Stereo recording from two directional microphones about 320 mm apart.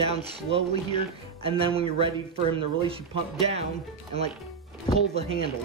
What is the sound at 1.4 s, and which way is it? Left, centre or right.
Speech, centre.